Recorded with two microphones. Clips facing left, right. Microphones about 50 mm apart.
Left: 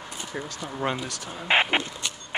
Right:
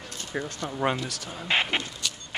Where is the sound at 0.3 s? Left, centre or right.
Centre.